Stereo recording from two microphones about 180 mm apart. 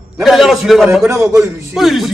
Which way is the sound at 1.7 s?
Centre (ahead or behind).